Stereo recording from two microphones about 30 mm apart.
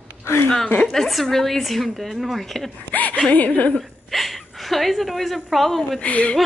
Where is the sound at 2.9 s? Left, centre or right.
Left.